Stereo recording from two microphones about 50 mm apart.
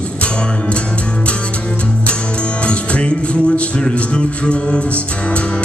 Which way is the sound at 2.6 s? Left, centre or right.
Left.